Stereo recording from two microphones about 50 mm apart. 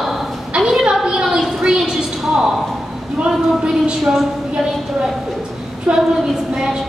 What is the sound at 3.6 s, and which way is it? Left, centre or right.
Speech, centre.